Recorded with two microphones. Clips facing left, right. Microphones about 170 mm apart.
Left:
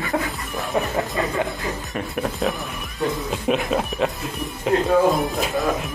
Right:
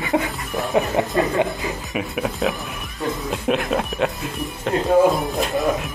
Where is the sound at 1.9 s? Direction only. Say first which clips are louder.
Right 2 dB; 5° right (ahead or behind).